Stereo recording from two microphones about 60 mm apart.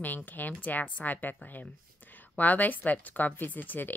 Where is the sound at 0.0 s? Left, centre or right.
Left.